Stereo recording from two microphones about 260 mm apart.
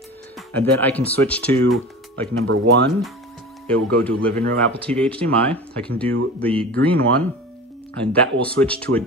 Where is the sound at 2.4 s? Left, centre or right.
Right.